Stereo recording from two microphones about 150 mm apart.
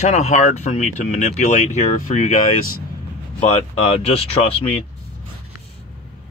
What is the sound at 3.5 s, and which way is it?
Speech, 45° left (ahead or behind).